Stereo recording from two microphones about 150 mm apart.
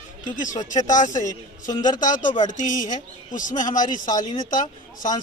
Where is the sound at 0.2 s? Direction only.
60° left (ahead or behind).